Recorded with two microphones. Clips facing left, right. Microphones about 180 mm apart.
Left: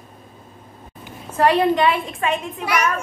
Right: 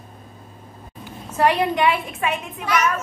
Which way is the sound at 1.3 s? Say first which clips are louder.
Left 3 dB; 15° right (ahead or behind).